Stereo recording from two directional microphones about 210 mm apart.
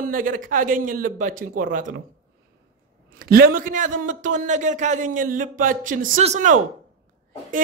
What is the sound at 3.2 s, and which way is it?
Music, 45° right (ahead or behind).